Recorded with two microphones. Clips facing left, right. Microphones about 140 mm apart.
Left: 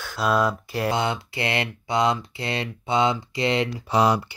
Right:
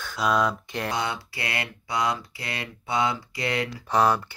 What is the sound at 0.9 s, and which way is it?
Speech, 25° left (ahead or behind).